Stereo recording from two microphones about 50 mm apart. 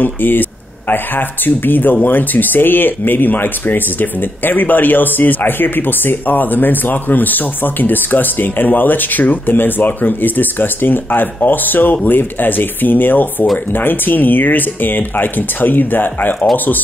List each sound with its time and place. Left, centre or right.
0.0 s speech: left